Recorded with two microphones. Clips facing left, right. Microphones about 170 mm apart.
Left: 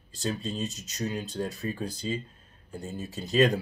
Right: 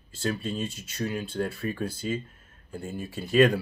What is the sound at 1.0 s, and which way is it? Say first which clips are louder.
Speech: right 2 dB; 20° left (ahead or behind).